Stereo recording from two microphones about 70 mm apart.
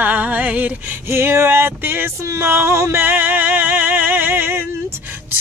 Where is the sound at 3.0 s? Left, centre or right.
Right.